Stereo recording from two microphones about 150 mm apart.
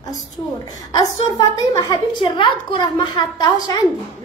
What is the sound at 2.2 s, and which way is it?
A woman's voice, 35° left (ahead or behind).